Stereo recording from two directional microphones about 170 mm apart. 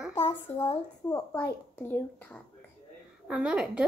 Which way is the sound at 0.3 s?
35° left (ahead or behind).